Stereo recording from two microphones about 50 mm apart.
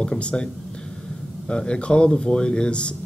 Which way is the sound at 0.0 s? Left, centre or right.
Centre.